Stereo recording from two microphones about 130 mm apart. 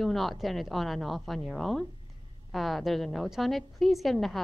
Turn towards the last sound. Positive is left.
turn(degrees=0)  # may be behind; listen again after turning